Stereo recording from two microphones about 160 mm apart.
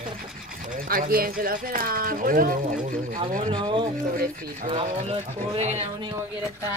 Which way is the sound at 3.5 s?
30° right (ahead or behind).